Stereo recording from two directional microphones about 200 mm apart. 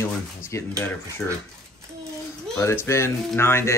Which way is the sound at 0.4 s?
15° left (ahead or behind).